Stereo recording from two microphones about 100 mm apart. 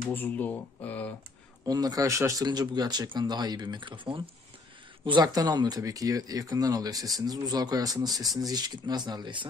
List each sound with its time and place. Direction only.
0.1 s speech: 15° left (ahead or behind)
1.7 s speech: 40° right (ahead or behind)
2.4 s speech: 45° right (ahead or behind)